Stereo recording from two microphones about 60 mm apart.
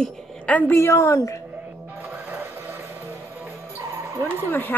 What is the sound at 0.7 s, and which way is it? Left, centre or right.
Speech, left.